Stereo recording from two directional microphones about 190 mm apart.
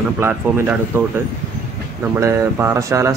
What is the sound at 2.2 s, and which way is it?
Speech, 15° right (ahead or behind).